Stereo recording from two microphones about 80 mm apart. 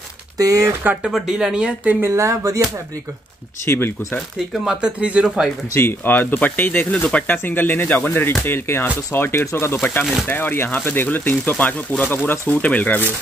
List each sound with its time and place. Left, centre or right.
0.4 s speech: right
1.0 s speech: centre
2.0 s speech: right
3.6 s speech: left
4.6 s speech: centre
5.7 s speech: left